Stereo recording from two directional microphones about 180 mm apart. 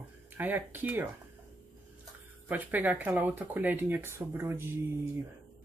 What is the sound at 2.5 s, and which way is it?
Speech, 10° right (ahead or behind).